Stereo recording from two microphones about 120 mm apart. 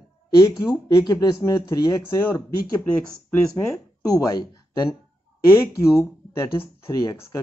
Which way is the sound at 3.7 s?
25° left (ahead or behind).